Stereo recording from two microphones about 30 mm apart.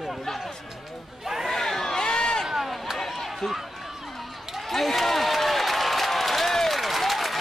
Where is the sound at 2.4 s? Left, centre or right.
Centre.